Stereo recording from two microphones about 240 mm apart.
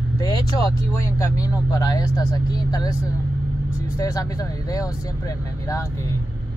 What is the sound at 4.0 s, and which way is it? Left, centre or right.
Speech, centre.